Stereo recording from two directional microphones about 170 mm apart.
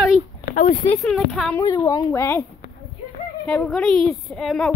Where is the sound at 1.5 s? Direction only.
20° left (ahead or behind).